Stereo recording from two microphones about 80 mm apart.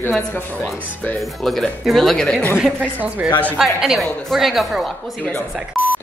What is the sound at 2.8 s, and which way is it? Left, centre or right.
Speech, right.